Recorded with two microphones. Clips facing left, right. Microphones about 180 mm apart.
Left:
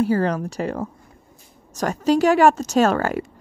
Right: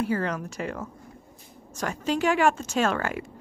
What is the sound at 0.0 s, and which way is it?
A woman's voice, 35° left (ahead or behind).